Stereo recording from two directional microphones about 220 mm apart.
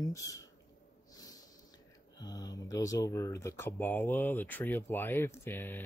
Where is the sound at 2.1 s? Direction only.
15° left (ahead or behind).